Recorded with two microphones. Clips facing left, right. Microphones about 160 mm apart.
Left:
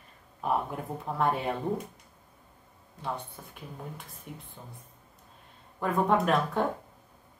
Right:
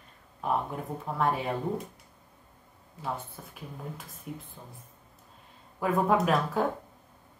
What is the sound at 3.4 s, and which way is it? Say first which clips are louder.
Speech: right 1 dB; centre (ahead or behind).